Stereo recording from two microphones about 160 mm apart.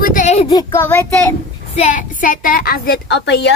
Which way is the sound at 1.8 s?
55° left (ahead or behind).